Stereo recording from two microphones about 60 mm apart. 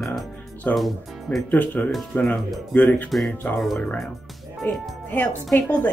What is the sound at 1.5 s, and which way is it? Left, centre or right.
Speech, left.